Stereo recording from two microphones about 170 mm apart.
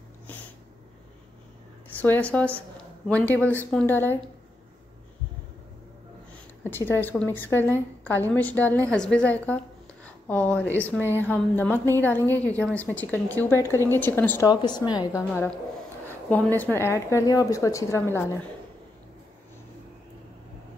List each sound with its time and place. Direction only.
2.0 s a woman's voice: 10° left (ahead or behind)
6.6 s a woman's voice: 10° left (ahead or behind)
10.0 s a sound: 10° left (ahead or behind)
11.1 s a woman's voice: 10° left (ahead or behind)
14.5 s a woman's voice: 25° left (ahead or behind)
16.3 s a woman's voice: 10° left (ahead or behind)